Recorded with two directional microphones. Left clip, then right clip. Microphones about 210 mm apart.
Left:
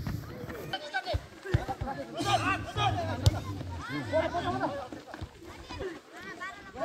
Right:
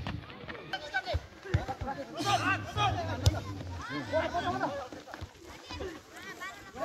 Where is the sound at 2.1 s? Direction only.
20° left (ahead or behind).